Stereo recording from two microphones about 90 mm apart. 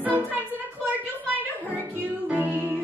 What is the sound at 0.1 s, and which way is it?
Music, 20° right (ahead or behind).